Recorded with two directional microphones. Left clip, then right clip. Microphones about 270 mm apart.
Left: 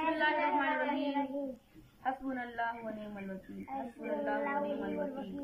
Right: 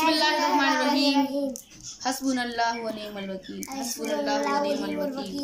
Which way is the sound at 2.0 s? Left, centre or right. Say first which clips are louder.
Right 9 dB; centre.